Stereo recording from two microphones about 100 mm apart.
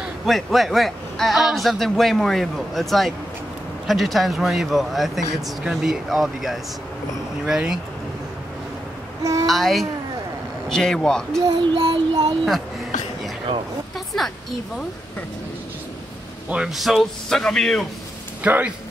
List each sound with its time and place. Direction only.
0.0 s a man's voice: centre (ahead or behind)
9.2 s speech: 35° right (ahead or behind)
9.5 s a man's voice: centre (ahead or behind)
11.6 s child singing: 50° right (ahead or behind)
13.5 s speech: 60° right (ahead or behind)
13.9 s speech: centre (ahead or behind)
16.4 s a man's voice: 5° right (ahead or behind)
18.4 s speech: 15° right (ahead or behind)